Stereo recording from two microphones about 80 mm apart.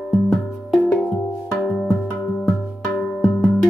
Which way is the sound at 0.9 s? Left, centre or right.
Centre.